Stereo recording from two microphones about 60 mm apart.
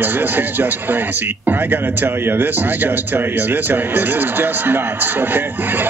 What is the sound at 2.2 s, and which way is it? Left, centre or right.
Speech, right.